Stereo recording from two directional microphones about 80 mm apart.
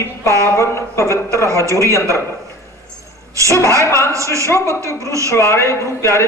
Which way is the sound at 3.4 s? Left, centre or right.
Right.